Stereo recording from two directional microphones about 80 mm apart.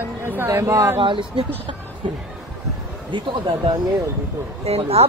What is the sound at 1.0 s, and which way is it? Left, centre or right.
Speech, right.